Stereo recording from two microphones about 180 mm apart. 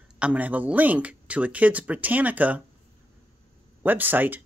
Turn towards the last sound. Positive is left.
turn(degrees=-10)  # may be behind; listen again after turning